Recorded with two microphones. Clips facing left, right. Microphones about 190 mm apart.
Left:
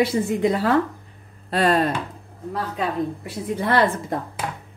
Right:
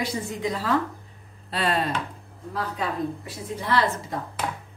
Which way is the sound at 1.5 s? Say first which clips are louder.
Left 6 dB; 45° left (ahead or behind).